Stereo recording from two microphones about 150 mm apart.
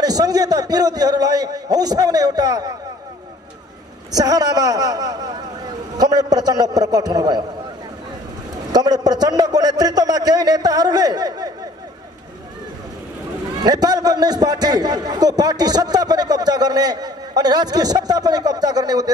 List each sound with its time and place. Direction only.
0.0 s a man's voice: 25° right (ahead or behind)
4.1 s a man's voice: 25° right (ahead or behind)
8.7 s a man's voice: 25° right (ahead or behind)
13.7 s a man's voice: 25° right (ahead or behind)